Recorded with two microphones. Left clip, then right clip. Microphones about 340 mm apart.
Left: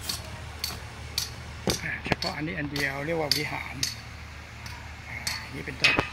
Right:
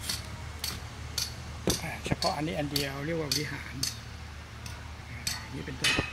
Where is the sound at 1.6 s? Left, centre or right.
Centre.